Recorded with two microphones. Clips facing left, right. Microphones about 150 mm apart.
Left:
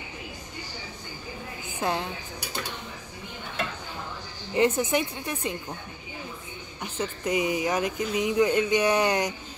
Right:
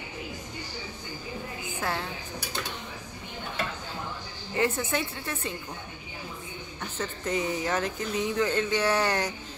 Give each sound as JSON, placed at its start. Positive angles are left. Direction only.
{"t": 1.8, "sound": "a woman's voice", "side_deg": 20}
{"t": 4.6, "sound": "speech", "side_deg": 20}
{"t": 6.8, "sound": "speech", "side_deg": 15}